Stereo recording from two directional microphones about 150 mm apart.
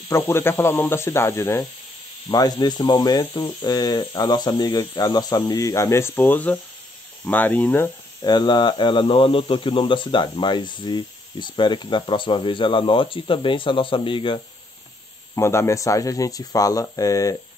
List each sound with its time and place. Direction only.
0.1 s speech: 15° left (ahead or behind)
8.2 s speech: 30° left (ahead or behind)
15.3 s speech: 20° left (ahead or behind)